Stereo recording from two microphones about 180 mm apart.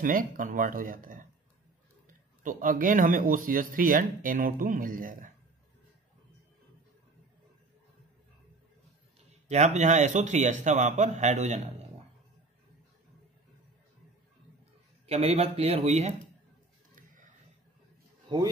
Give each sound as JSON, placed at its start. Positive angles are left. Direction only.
{"t": 0.0, "sound": "speech", "side_deg": -50}
{"t": 9.5, "sound": "a man's voice", "side_deg": -40}
{"t": 15.0, "sound": "a man's voice", "side_deg": -35}
{"t": 18.3, "sound": "speech", "side_deg": -25}